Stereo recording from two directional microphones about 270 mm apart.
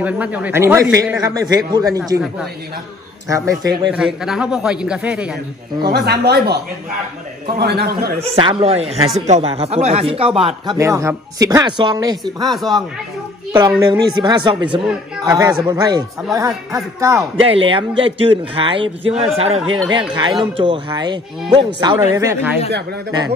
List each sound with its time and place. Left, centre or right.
0.0 s a man's voice: centre
5.8 s speech: right
8.3 s speech: centre
12.4 s a man's voice: centre
13.5 s speech: centre